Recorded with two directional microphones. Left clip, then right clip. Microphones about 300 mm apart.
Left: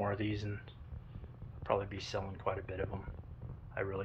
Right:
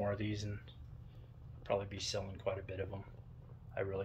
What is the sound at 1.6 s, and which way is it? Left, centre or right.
Speech, centre.